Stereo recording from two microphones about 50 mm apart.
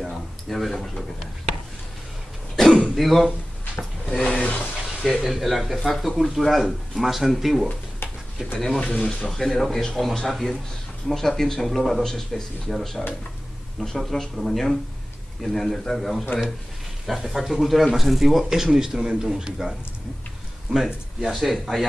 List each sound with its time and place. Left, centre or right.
0.0 s a sound: centre
2.5 s cough: centre
3.0 s a man's voice: centre
3.7 s speech: centre
5.2 s a man's voice: centre
8.5 s speech: centre
8.8 s speech: left
9.3 s a man's voice: centre
20.7 s a man's voice: centre